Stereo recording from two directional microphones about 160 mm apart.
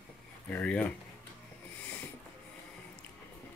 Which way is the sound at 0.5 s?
10° left (ahead or behind).